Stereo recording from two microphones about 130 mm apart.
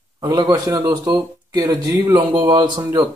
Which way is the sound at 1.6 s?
20° right (ahead or behind).